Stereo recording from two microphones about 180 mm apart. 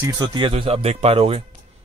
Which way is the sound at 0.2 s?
30° right (ahead or behind).